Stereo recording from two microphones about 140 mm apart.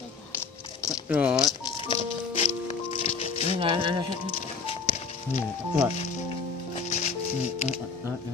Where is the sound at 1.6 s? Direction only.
40° left (ahead or behind).